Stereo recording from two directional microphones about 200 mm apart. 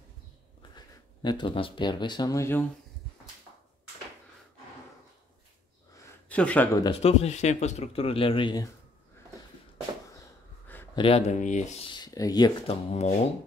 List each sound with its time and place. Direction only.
0.6 s speech: 20° left (ahead or behind)
6.2 s speech: 5° left (ahead or behind)
6.8 s speech: 30° left (ahead or behind)
11.0 s speech: 30° left (ahead or behind)
11.9 s speech: 20° left (ahead or behind)